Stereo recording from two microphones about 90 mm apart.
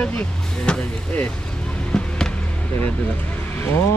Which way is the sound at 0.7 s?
15° left (ahead or behind).